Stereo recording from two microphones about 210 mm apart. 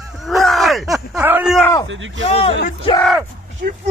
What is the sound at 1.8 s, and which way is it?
Speech, 65° right (ahead or behind).